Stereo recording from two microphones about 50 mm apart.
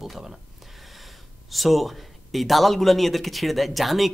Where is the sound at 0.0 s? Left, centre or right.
Centre.